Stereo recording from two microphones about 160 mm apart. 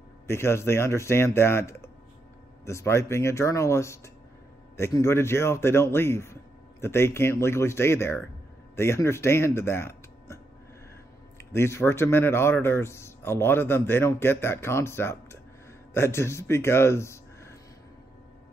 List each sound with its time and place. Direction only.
0.3 s speech: 15° left (ahead or behind)